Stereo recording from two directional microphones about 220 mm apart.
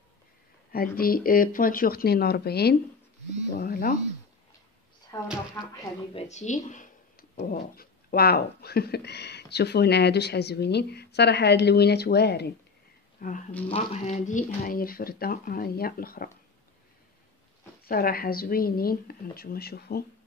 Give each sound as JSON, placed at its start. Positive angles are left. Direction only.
{"t": 0.7, "sound": "speech", "side_deg": 40}
{"t": 5.1, "sound": "speech", "side_deg": 20}
{"t": 6.1, "sound": "speech", "side_deg": 30}
{"t": 13.2, "sound": "speech", "side_deg": 35}
{"t": 17.8, "sound": "speech", "side_deg": 45}